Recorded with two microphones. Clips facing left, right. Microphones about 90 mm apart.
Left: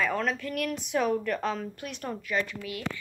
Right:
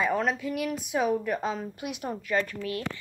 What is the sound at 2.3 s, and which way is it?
Speech, 40° right (ahead or behind).